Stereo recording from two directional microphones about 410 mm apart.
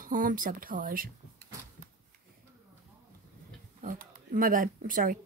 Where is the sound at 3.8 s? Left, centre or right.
Centre.